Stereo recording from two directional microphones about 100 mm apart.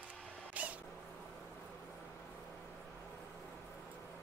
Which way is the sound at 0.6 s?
15° right (ahead or behind).